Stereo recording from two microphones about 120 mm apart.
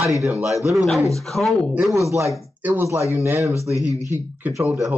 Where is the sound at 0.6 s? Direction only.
Centre (ahead or behind).